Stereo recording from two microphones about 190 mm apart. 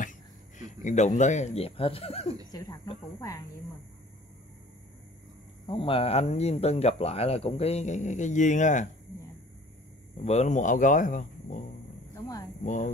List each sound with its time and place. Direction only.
0.6 s speech: 40° left (ahead or behind)
2.5 s speech: 20° left (ahead or behind)
5.7 s speech: 30° left (ahead or behind)
10.2 s speech: 35° left (ahead or behind)
12.6 s speech: 40° left (ahead or behind)